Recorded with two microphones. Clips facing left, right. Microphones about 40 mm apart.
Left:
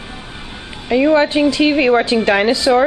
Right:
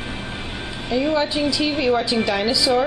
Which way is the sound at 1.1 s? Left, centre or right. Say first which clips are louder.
Left 7 dB; left.